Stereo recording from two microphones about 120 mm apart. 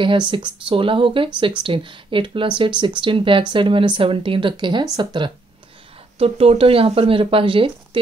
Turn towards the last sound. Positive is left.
turn(degrees=-45)  # may be behind; listen again after turning